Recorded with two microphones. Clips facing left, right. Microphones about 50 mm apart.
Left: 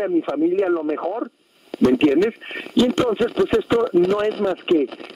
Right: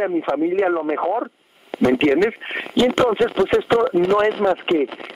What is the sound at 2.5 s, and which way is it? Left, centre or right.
Speech, right.